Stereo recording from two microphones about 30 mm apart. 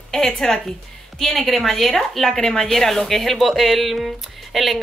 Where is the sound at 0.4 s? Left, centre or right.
Centre.